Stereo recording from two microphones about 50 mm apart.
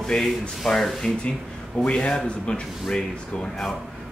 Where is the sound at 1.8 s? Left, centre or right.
Left.